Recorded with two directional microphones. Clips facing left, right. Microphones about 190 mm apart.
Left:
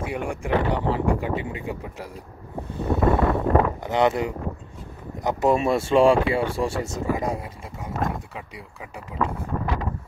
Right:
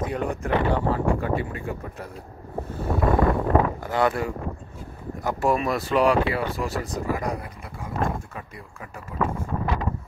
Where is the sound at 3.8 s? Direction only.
20° left (ahead or behind).